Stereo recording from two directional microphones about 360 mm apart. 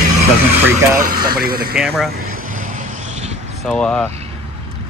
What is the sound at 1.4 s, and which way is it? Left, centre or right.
Speech, right.